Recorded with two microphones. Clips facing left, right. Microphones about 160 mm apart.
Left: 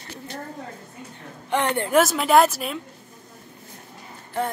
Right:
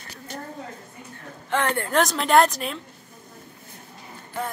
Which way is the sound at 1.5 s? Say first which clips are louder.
Left 1 dB; 20° left (ahead or behind).